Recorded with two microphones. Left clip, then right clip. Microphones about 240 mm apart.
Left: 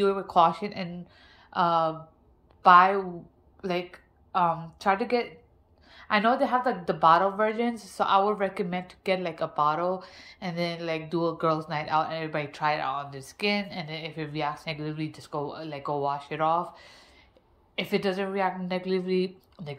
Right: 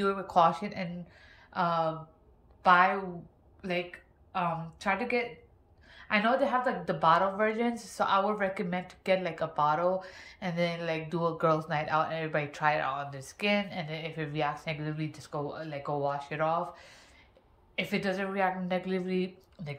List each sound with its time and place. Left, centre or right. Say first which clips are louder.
0.0 s a woman's voice: left 3 dB; centre